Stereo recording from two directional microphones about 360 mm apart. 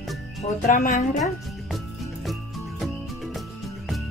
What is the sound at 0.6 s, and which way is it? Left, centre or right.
Speech, left.